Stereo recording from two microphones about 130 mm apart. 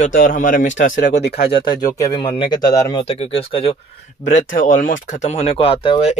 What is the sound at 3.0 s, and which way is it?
Speech, 50° left (ahead or behind).